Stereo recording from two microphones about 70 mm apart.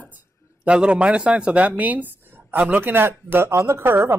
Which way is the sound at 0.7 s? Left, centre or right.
Centre.